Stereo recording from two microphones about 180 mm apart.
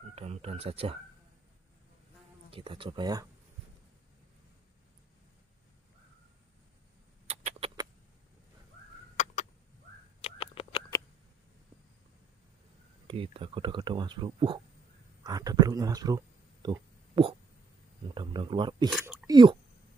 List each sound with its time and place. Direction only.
0.1 s speech: 35° right (ahead or behind)
2.5 s speech: 30° right (ahead or behind)
7.2 s rodents: 40° right (ahead or behind)
9.1 s a sound: 40° left (ahead or behind)
13.0 s speech: 30° right (ahead or behind)
18.9 s speech: centre (ahead or behind)
19.2 s speech: 25° right (ahead or behind)